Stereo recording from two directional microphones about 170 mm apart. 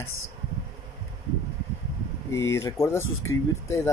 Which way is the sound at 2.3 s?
15° left (ahead or behind).